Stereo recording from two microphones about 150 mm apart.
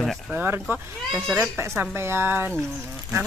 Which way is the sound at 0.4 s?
10° right (ahead or behind).